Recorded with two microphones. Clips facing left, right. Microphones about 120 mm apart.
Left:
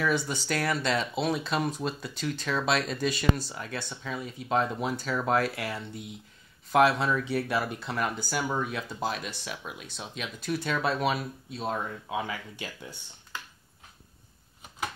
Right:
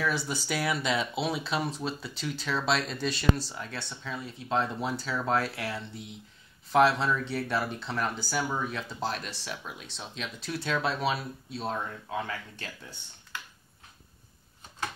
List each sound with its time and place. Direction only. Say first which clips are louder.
0.0 s speech: left 2 dB; 5° right (ahead or behind)